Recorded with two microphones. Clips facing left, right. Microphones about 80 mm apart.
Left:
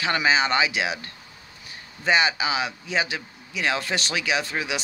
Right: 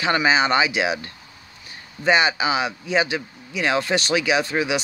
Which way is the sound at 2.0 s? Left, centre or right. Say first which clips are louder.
Right 3 dB; centre.